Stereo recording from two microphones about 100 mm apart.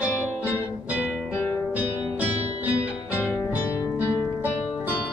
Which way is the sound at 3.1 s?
20° left (ahead or behind).